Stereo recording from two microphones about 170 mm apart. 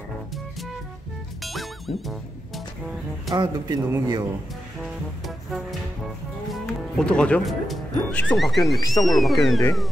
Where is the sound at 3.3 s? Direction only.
25° right (ahead or behind).